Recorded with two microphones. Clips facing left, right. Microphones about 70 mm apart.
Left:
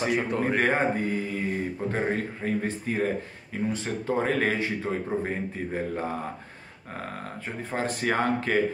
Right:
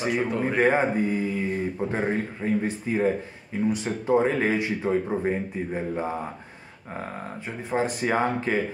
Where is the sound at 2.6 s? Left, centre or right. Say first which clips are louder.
Right 3 dB; centre.